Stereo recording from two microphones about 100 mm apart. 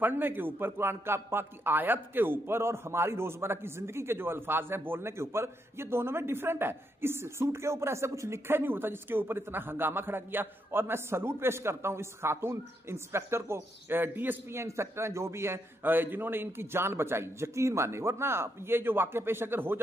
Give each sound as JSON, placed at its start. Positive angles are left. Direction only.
{"t": 0.0, "sound": "a man's voice", "side_deg": -20}